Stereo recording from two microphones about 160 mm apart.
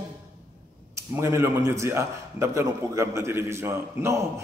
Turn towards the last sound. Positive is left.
turn(degrees=-15)  # may be behind; listen again after turning